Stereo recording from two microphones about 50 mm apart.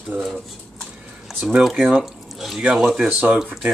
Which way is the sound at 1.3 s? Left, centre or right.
Centre.